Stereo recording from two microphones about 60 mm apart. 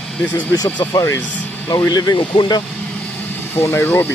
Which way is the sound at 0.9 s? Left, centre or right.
Left.